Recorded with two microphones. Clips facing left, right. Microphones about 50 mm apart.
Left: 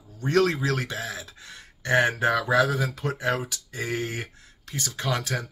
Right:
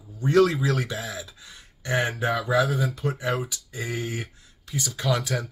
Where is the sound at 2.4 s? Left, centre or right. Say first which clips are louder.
Even; left.